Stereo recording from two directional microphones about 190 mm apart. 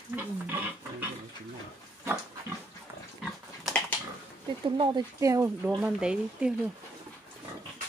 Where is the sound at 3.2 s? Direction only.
5° left (ahead or behind).